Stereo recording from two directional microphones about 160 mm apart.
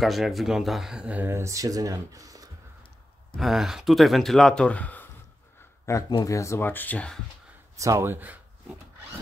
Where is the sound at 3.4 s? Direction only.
Centre (ahead or behind).